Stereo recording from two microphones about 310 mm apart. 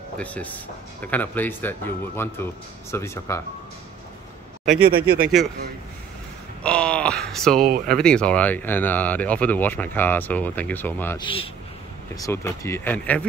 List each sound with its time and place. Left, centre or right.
0.2 s speech: centre
4.8 s speech: right
6.6 s speech: centre
7.6 s speech: right
8.0 s speech: centre